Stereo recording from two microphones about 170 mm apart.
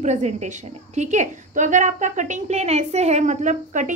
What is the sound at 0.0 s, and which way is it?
A woman's voice, 45° right (ahead or behind).